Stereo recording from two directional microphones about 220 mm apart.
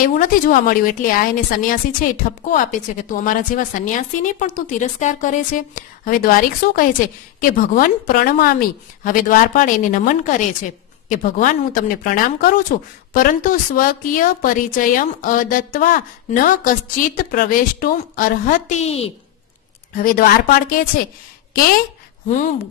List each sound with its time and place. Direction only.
0.0 s a woman's voice: 40° left (ahead or behind)
20.0 s a woman's voice: 40° left (ahead or behind)